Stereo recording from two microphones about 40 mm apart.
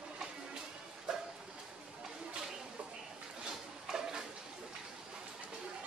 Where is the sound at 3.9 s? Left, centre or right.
Centre.